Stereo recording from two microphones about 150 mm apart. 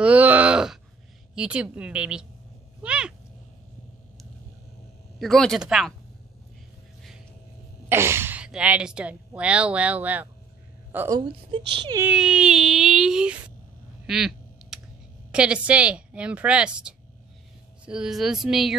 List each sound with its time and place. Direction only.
0.0 s groan: 10° right (ahead or behind)
1.3 s speech: 5° right (ahead or behind)
5.2 s a sound: centre (ahead or behind)
7.9 s speech: 15° right (ahead or behind)
11.1 s speech: 30° right (ahead or behind)
12.0 s a sound: 5° right (ahead or behind)
14.0 s quack: 5° right (ahead or behind)
15.3 s speech: 5° right (ahead or behind)
17.8 s a sound: 5° right (ahead or behind)